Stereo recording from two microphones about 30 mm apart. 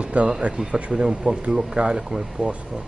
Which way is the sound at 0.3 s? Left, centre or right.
Right.